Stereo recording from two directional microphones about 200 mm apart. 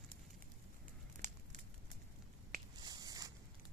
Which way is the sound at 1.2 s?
45° right (ahead or behind).